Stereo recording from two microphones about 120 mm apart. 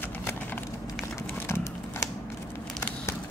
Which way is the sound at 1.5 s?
25° left (ahead or behind).